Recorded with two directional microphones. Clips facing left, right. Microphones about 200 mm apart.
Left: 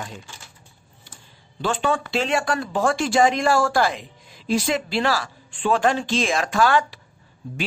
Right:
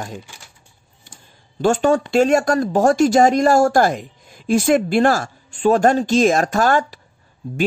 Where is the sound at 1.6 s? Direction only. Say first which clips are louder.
Right 7 dB; 45° right (ahead or behind).